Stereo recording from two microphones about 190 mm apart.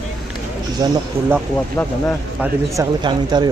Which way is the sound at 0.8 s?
20° right (ahead or behind).